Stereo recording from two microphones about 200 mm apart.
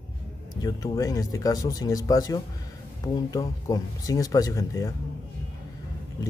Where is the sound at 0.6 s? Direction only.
20° left (ahead or behind).